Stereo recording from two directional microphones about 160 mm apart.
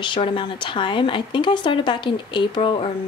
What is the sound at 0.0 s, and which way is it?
Speech, 30° left (ahead or behind).